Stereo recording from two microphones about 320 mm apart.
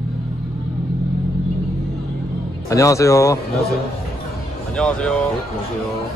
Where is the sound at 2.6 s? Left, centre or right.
Centre.